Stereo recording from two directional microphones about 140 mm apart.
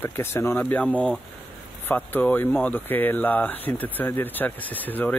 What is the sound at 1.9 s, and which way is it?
Speech, 15° left (ahead or behind).